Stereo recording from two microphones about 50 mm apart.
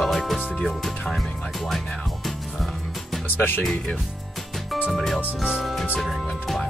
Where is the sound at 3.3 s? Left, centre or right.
Left.